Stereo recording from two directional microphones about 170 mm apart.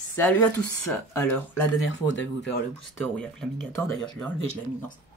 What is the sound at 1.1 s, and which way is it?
Speech, 10° left (ahead or behind).